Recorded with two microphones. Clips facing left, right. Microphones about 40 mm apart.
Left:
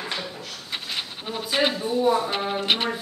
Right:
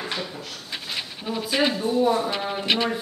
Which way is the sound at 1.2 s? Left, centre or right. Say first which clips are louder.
Right 1 dB; left.